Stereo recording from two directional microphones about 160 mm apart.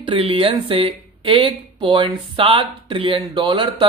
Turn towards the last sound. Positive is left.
turn(degrees=-30)  # may be behind; listen again after turning